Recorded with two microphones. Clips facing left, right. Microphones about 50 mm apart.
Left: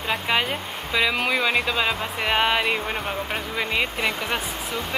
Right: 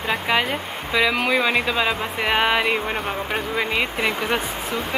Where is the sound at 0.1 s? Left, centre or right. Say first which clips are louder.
Right 2 dB; centre.